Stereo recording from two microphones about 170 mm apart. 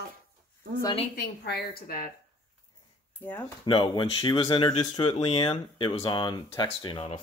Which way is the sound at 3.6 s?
25° left (ahead or behind).